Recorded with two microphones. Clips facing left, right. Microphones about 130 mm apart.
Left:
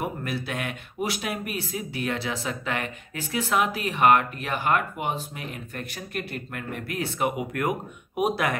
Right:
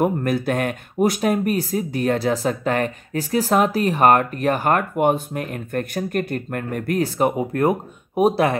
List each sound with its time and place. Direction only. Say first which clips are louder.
0.0 s speech: right 10 dB; 45° right (ahead or behind)